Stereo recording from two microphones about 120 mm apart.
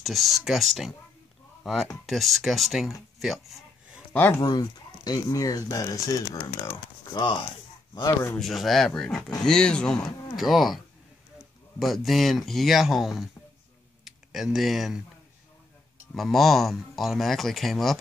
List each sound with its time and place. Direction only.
0.0 s speech: centre (ahead or behind)
4.1 s speech: 15° left (ahead or behind)
4.4 s speech: 35° left (ahead or behind)
7.1 s speech: 40° left (ahead or behind)
8.4 s speech: centre (ahead or behind)
11.8 s speech: centre (ahead or behind)
16.2 s speech: centre (ahead or behind)